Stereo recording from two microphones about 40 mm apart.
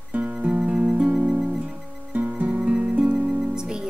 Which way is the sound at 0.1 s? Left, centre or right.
Right.